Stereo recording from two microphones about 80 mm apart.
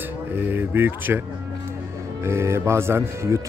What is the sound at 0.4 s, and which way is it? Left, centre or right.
Speech, right.